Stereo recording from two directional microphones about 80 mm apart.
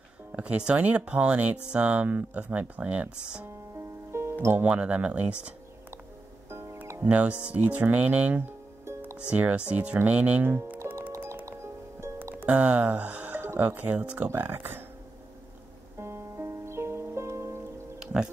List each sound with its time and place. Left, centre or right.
0.3 s speech: centre
3.7 s music: right
4.6 s speech: centre
6.5 s music: right
7.0 s speech: centre
10.9 s music: right
12.5 s speech: centre
16.0 s music: right
17.9 s music: centre